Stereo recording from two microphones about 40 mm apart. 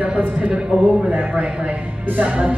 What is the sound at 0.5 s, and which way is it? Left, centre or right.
Speech, centre.